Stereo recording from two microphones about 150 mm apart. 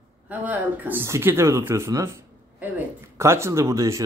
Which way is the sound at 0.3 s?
10° right (ahead or behind).